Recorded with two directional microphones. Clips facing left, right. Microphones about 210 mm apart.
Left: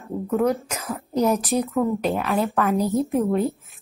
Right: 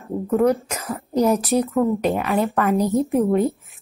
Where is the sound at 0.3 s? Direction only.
5° right (ahead or behind).